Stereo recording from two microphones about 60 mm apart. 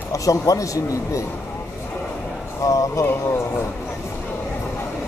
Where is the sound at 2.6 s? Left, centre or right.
Left.